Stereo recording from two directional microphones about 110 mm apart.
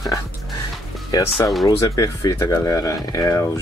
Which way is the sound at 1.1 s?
35° left (ahead or behind).